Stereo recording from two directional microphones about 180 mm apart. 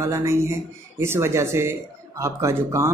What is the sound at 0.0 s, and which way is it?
Speech, 15° right (ahead or behind).